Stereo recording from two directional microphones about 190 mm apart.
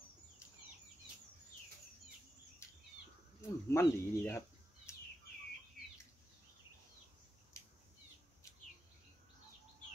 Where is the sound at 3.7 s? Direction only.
15° left (ahead or behind).